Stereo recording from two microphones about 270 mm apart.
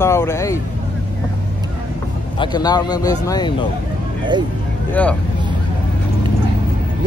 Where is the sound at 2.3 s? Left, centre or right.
Centre.